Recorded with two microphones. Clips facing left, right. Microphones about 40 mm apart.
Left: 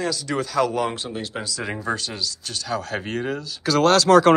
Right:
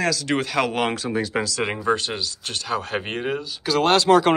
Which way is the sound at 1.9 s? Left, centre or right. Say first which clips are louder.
Right 5 dB; right.